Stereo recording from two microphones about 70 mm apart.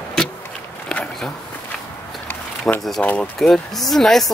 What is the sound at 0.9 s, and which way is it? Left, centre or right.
Walk, centre.